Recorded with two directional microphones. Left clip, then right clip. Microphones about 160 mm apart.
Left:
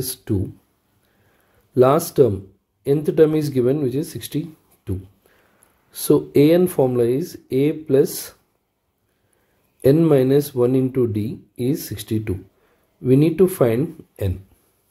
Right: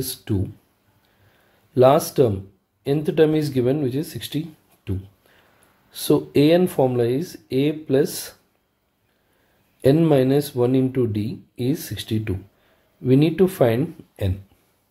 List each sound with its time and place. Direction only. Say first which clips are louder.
0.0 s speech: left 2 dB; 30° left (ahead or behind)
1.7 s speech: even; 25° left (ahead or behind)
9.8 s speech: left 2 dB; 25° left (ahead or behind)